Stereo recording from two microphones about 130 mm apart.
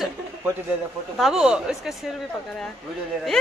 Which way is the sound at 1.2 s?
5° right (ahead or behind).